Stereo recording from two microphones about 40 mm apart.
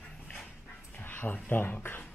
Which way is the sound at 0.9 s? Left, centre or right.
Left.